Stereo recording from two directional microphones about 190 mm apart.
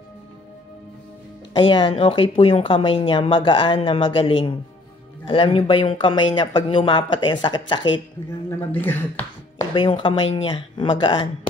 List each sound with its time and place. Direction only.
1.5 s speech: 25° left (ahead or behind)
8.5 s speech: 10° left (ahead or behind)
9.8 s speech: 25° left (ahead or behind)